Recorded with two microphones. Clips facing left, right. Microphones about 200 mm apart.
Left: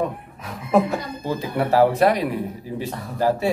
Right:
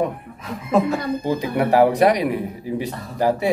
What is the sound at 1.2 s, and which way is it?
A man's voice, 15° right (ahead or behind).